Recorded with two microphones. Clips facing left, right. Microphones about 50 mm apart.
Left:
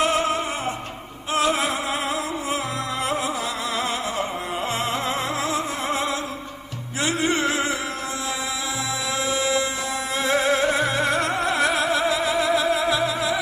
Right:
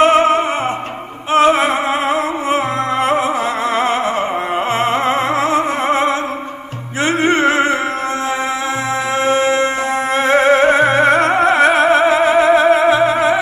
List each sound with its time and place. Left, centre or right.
0.0 s music: right
4.7 s music: right
9.2 s music: right